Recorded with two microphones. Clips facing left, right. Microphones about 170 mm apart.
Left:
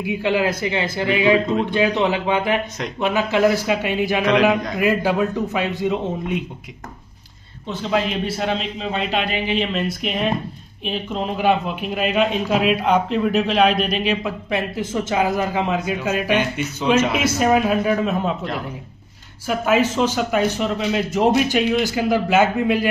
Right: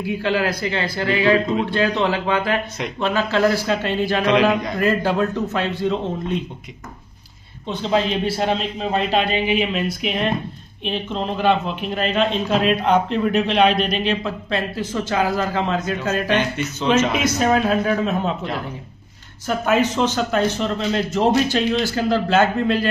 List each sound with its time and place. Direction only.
0.0 s a man's voice: 20° left (ahead or behind)
4.3 s a man's voice: centre (ahead or behind)
4.7 s speech: 10° left (ahead or behind)
8.1 s a man's voice: 30° right (ahead or behind)
8.7 s a man's voice: 40° right (ahead or behind)
9.3 s a man's voice: 10° right (ahead or behind); by 22.8 s 15° left (ahead or behind)